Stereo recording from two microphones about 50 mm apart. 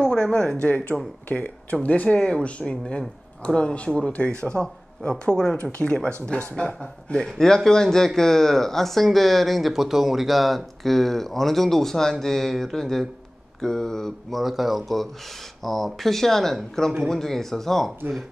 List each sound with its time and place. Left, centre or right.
0.0 s speech: centre
5.6 s speech: left; by 14.4 s centre
14.4 s speech: centre